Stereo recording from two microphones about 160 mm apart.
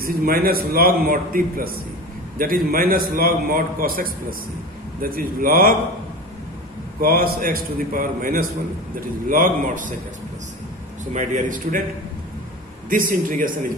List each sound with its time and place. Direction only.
0.0 s a man's voice: 65° right (ahead or behind)
7.0 s a man's voice: 65° right (ahead or behind)
11.1 s a man's voice: 50° right (ahead or behind)
12.9 s a man's voice: 60° right (ahead or behind)